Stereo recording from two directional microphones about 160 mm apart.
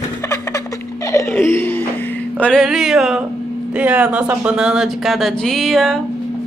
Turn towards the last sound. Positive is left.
turn(degrees=0)  # may be behind; listen again after turning